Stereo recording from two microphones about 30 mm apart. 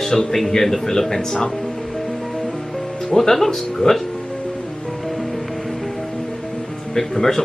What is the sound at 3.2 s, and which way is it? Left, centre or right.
Speech, centre.